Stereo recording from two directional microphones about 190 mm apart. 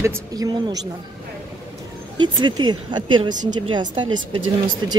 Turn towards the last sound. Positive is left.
turn(degrees=-25)  # may be behind; listen again after turning